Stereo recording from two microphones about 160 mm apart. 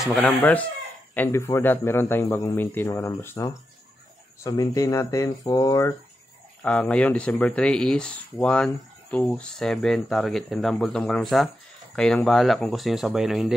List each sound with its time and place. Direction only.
0.0 s a man's voice: 5° left (ahead or behind); by 5.9 s 20° left (ahead or behind)
6.6 s speech: 10° left (ahead or behind)